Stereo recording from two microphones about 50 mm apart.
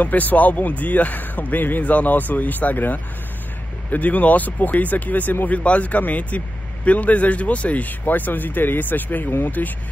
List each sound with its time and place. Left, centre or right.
0.0 s speech: left